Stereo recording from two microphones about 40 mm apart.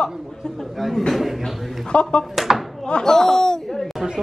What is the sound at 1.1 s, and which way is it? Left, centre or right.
Speech, centre.